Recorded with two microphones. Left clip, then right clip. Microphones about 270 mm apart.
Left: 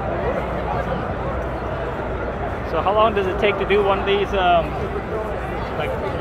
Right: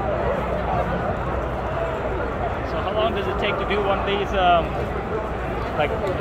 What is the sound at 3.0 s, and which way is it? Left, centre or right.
Speech, centre.